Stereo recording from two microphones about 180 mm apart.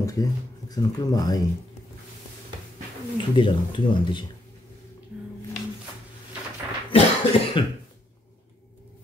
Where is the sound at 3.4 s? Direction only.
25° left (ahead or behind).